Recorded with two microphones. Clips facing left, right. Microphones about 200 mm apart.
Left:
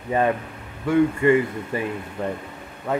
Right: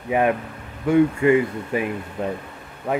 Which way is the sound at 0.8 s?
15° right (ahead or behind).